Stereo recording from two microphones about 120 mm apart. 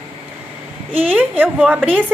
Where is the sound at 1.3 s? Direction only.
10° right (ahead or behind).